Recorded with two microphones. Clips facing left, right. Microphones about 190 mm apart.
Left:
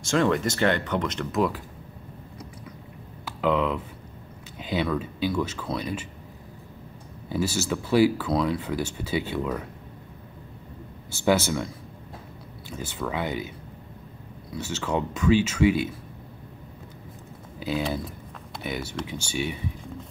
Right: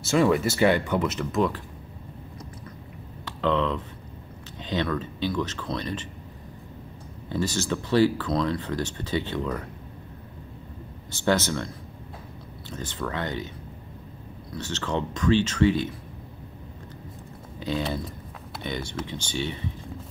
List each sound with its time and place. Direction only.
0.0 s speech: 5° right (ahead or behind)
3.3 s speech: 10° left (ahead or behind)
7.2 s speech: 10° left (ahead or behind)
11.1 s speech: 10° left (ahead or behind)
14.5 s speech: 10° left (ahead or behind)
17.6 s speech: 5° left (ahead or behind)